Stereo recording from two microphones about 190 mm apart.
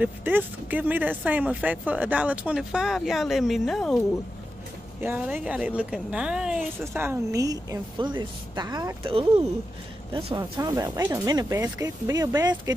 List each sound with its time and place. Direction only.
0.0 s a woman's voice: 10° right (ahead or behind)
5.0 s a woman's voice: 10° right (ahead or behind)